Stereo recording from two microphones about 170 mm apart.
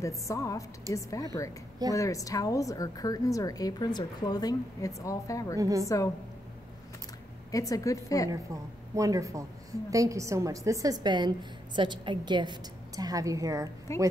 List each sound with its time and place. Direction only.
0.0 s a woman's voice: 20° left (ahead or behind)
0.9 s a woman's voice: 20° right (ahead or behind)
2.0 s a woman's voice: 20° left (ahead or behind)
5.6 s a woman's voice: 20° right (ahead or behind)
7.5 s a woman's voice: 20° left (ahead or behind)
8.9 s a woman's voice: 20° right (ahead or behind)
13.9 s a woman's voice: 15° left (ahead or behind)